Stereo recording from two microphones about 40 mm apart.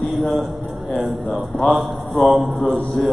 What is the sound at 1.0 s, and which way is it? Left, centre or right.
A man's voice, centre.